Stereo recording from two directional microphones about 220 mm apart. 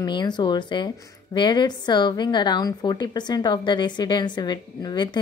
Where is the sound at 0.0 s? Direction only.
20° left (ahead or behind).